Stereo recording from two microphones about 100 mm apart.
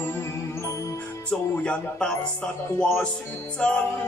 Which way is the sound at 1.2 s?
10° left (ahead or behind).